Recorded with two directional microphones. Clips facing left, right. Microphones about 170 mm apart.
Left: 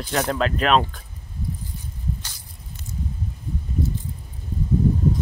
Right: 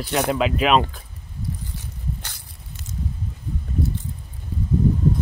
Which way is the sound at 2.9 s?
90° right.